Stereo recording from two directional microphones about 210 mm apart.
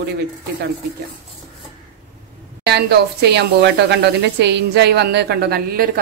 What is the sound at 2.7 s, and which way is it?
A woman's voice, 50° right (ahead or behind).